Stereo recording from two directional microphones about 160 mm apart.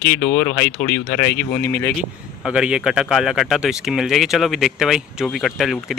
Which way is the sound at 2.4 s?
5° right (ahead or behind).